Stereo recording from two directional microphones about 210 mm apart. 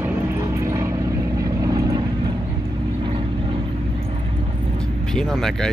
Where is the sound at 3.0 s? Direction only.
25° right (ahead or behind).